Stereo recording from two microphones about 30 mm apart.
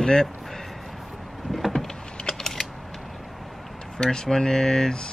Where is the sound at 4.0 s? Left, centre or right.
Centre.